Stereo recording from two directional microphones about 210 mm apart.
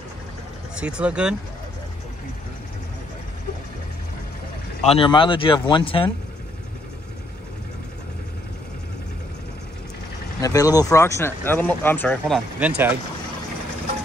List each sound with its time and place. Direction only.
0.7 s speech: 5° right (ahead or behind)
4.8 s speech: 25° left (ahead or behind)
10.4 s speech: 15° left (ahead or behind)
12.5 s speech: 5° right (ahead or behind)